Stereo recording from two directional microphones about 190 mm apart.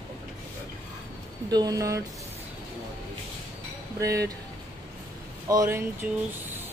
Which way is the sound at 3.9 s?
15° right (ahead or behind).